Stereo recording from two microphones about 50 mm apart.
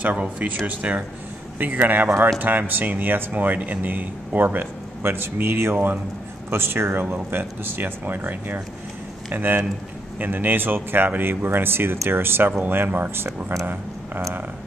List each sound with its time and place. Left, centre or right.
0.0 s speech: right
1.6 s speech: right